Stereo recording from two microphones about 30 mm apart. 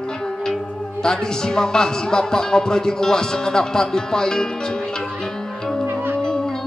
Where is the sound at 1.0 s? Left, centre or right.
Left.